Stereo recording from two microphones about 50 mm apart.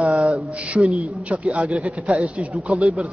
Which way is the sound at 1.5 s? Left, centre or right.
Right.